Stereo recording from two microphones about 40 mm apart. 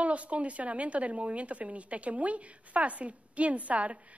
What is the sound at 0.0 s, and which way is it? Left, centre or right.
Speech, right.